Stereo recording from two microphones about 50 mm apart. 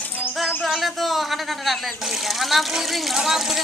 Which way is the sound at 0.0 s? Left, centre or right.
Left.